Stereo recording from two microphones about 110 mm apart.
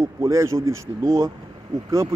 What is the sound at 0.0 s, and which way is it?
Speech, 30° right (ahead or behind).